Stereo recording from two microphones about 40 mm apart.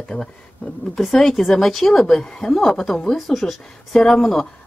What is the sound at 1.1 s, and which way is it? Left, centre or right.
Speech, centre.